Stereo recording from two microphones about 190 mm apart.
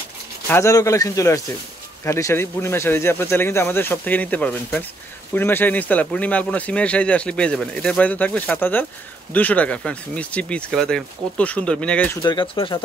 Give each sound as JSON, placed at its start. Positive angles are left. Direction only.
{"t": 0.5, "sound": "speech", "side_deg": 15}